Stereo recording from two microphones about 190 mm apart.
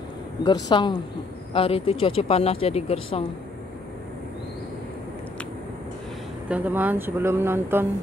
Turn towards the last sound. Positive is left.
turn(degrees=-10)  # may be behind; listen again after turning